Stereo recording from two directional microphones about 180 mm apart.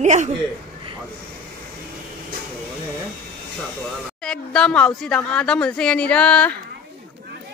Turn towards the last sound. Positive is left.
turn(degrees=5)  # may be behind; listen again after turning